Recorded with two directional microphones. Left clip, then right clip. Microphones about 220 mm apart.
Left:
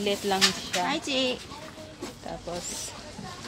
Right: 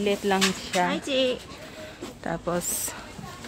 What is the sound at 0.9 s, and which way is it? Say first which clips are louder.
Speech: right 2 dB; 20° left (ahead or behind).